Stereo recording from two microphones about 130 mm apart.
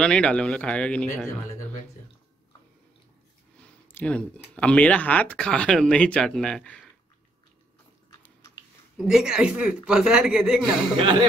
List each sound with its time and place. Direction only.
0.0 s speech: 5° left (ahead or behind)
3.5 s speech: 10° left (ahead or behind)
8.9 s speech: 5° right (ahead or behind)
10.6 s speech: 40° right (ahead or behind)